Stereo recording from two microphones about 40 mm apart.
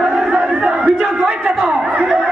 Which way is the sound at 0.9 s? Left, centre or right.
Centre.